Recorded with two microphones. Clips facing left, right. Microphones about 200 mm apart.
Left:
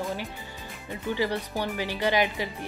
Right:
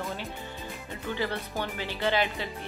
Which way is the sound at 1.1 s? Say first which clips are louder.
Left 4 dB; 15° left (ahead or behind).